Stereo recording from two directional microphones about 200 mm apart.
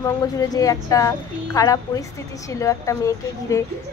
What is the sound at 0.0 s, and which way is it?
A woman's voice, 15° left (ahead or behind).